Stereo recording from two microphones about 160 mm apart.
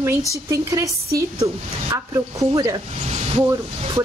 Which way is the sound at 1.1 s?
20° right (ahead or behind).